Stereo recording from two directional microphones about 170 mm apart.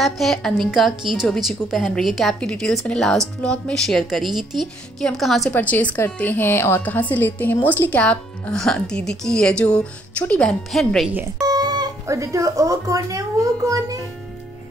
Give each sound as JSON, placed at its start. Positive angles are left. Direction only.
{"t": 0.0, "sound": "a woman's voice", "side_deg": 0}
{"t": 11.1, "sound": "speech", "side_deg": -20}